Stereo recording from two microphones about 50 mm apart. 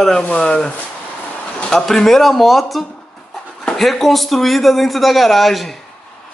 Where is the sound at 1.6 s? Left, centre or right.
Centre.